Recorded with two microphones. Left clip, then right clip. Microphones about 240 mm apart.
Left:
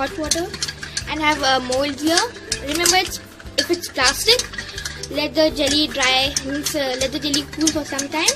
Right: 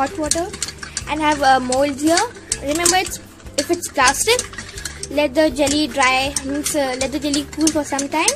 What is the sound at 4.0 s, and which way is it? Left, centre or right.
Speech, right.